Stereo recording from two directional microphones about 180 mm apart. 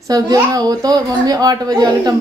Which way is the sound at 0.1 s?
20° right (ahead or behind).